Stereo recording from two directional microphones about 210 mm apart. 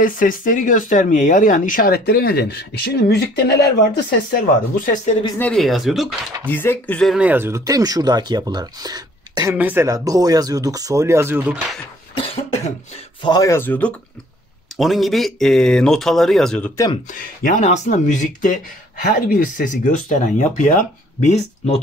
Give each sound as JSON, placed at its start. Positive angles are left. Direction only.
{"t": 0.0, "sound": "speech", "side_deg": 40}
{"t": 5.4, "sound": "speech", "side_deg": 0}
{"t": 6.5, "sound": "speech", "side_deg": 10}
{"t": 12.2, "sound": "cough", "side_deg": 25}
{"t": 13.2, "sound": "speech", "side_deg": 20}
{"t": 17.1, "sound": "speech", "side_deg": 40}